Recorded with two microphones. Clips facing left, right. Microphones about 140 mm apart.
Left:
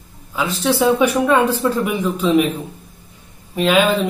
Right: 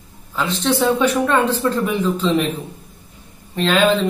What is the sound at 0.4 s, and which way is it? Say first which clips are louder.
Speech: left 1 dB; 10° left (ahead or behind).